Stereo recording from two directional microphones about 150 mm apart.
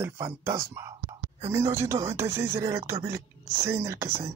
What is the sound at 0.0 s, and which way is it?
Speech, 20° right (ahead or behind).